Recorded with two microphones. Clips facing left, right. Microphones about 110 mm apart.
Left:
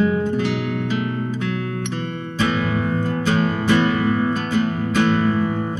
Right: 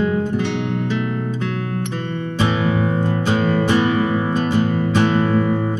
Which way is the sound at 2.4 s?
25° right (ahead or behind).